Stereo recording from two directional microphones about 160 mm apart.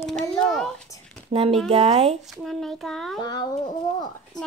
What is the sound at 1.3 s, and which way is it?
Speech, 40° right (ahead or behind).